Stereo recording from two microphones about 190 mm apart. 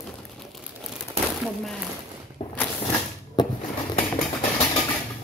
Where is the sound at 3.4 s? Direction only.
20° left (ahead or behind).